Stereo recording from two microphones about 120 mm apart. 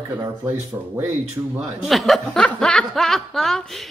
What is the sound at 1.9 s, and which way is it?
Speech, centre (ahead or behind).